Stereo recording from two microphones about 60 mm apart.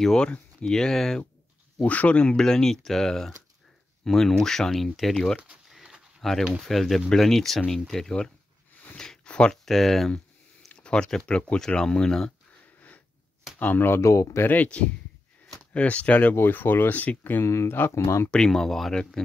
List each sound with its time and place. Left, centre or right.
0.0 s speech: centre
1.8 s speech: left; by 5.1 s centre
6.2 s speech: centre
8.9 s a sound: centre
9.5 s speech: centre
10.7 s speech: centre
13.6 s speech: left
14.0 s speech: left
14.4 s speech: left
16.3 s speech: left
17.9 s speech: left
18.3 s speech: centre